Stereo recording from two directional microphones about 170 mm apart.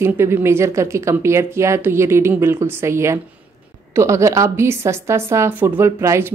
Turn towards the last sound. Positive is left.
turn(degrees=-15)  # may be behind; listen again after turning